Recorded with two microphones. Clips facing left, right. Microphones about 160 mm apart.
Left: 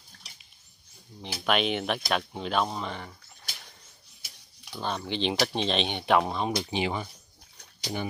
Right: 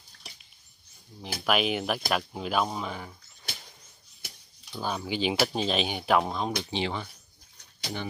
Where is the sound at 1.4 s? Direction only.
5° right (ahead or behind).